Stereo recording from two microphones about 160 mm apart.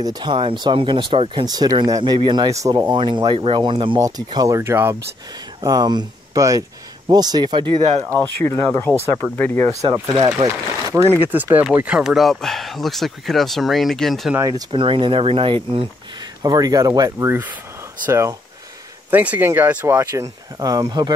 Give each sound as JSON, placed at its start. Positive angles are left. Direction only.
{"t": 0.0, "sound": "speech", "side_deg": -25}
{"t": 8.0, "sound": "speech", "side_deg": -20}
{"t": 9.2, "sound": "speech", "side_deg": 15}
{"t": 10.0, "sound": "speech", "side_deg": -25}
{"t": 14.3, "sound": "speech", "side_deg": -20}
{"t": 14.7, "sound": "speech", "side_deg": -30}